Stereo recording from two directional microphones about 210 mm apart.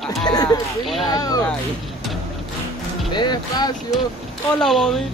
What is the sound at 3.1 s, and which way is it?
Speech, 20° left (ahead or behind).